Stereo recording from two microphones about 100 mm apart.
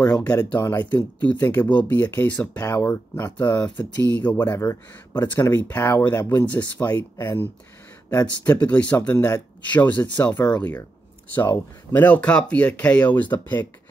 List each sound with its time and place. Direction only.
0.0 s speech: 10° left (ahead or behind)
8.5 s speech: 15° left (ahead or behind)
9.2 s speech: 35° left (ahead or behind)
9.8 s speech: 15° left (ahead or behind)